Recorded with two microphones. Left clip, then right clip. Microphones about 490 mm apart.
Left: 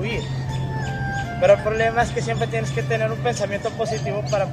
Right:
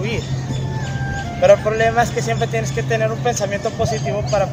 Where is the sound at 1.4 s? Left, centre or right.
Left.